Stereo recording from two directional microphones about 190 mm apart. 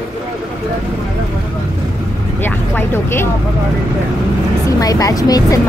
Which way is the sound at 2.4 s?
10° left (ahead or behind).